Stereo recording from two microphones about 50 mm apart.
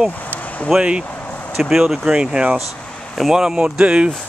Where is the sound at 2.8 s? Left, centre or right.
Centre.